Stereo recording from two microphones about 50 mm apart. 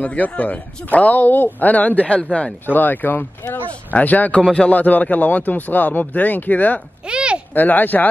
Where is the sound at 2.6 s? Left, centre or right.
Left.